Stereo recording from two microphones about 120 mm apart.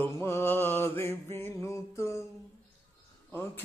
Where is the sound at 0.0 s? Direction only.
20° left (ahead or behind).